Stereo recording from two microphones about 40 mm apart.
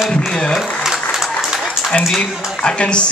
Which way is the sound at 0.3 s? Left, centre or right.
Centre.